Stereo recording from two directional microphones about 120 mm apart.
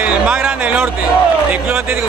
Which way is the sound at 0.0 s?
10° right (ahead or behind).